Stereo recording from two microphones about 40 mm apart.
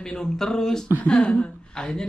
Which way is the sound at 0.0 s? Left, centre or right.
Centre.